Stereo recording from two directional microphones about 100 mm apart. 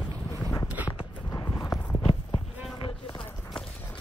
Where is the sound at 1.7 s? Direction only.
15° left (ahead or behind).